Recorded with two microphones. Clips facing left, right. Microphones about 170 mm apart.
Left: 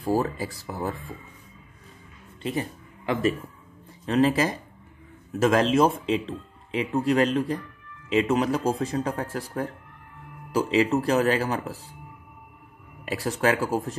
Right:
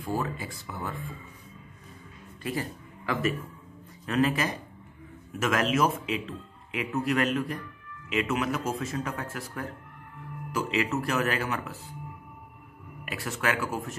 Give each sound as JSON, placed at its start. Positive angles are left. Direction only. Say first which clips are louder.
{"t": 0.0, "sound": "speech", "louder": "left 6 dB", "side_deg": 35}
{"t": 3.1, "sound": "speech", "louder": "left 4 dB", "side_deg": 30}
{"t": 13.0, "sound": "speech", "louder": "left 6 dB", "side_deg": 35}